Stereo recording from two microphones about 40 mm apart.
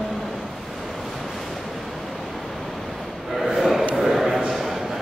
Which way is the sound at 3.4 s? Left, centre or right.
Centre.